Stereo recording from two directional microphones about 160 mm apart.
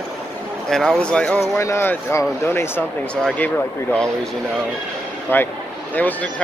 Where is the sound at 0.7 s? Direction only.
Centre (ahead or behind).